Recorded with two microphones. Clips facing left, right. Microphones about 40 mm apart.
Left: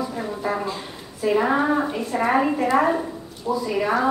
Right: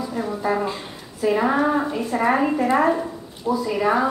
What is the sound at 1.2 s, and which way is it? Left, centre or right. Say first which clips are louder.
Speech: right 1 dB; centre.